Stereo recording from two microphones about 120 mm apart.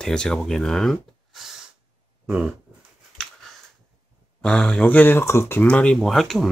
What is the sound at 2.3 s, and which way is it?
Speech, 5° right (ahead or behind).